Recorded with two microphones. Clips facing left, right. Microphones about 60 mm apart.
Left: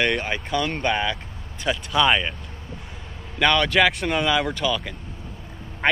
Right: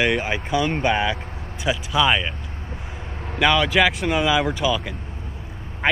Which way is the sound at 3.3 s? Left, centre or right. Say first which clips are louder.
Right 1 dB; centre.